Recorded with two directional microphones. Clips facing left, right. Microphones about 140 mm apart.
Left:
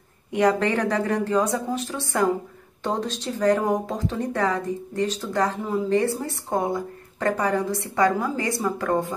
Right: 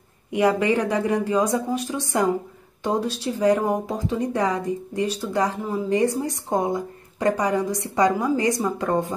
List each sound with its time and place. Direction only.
0.3 s a woman's voice: 10° right (ahead or behind)
5.6 s a woman's voice: centre (ahead or behind)
5.9 s a woman's voice: 15° right (ahead or behind)